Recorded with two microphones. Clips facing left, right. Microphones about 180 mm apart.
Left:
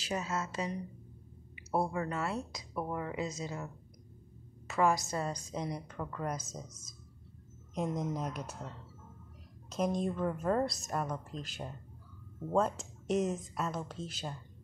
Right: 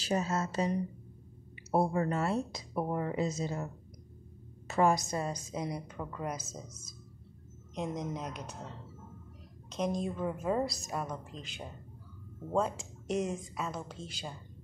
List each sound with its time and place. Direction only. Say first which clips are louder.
0.0 s a woman's voice: right 4 dB; 35° right (ahead or behind)
4.9 s a woman's voice: right 1 dB; 15° right (ahead or behind)
7.7 s a woman's voice: left 2 dB; 5° left (ahead or behind)
9.7 s a woman's voice: left 1 dB; centre (ahead or behind)